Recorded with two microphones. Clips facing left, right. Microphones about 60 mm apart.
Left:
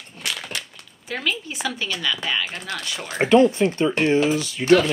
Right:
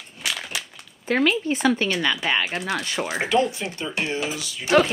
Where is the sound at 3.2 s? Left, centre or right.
Left.